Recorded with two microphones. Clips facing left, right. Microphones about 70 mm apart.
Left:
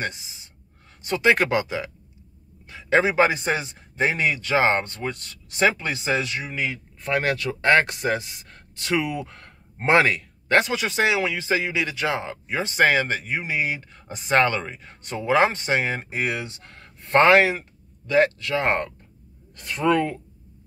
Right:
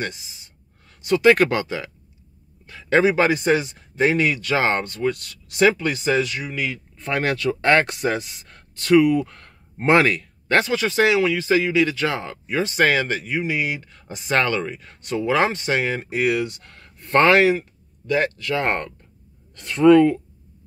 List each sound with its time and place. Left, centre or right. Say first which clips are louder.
1.0 s a man's voice: right 5 dB; left